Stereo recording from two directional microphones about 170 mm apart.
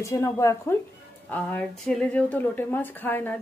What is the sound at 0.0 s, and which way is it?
Speech, 20° left (ahead or behind).